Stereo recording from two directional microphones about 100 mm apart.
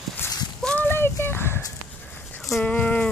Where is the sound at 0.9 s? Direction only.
20° left (ahead or behind).